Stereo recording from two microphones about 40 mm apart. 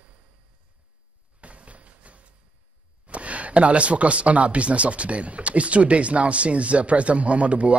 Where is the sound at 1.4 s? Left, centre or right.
Right.